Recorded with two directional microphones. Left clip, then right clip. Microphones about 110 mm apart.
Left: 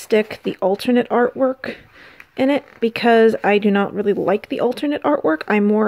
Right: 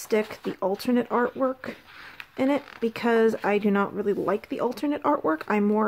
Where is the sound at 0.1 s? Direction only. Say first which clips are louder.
Left 8 dB; 30° left (ahead or behind).